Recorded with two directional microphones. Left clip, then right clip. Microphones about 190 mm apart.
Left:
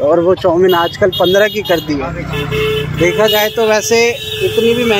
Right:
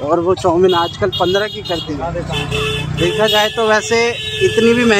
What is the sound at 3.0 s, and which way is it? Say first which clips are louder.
Speech: left 2 dB; 5° right (ahead or behind).